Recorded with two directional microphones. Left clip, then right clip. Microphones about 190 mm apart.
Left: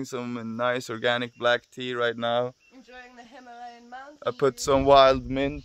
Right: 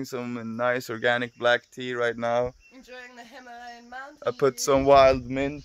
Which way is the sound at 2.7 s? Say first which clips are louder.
Right 3 dB; 55° right (ahead or behind).